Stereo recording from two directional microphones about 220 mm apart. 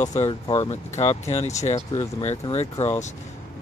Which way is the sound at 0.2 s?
20° left (ahead or behind).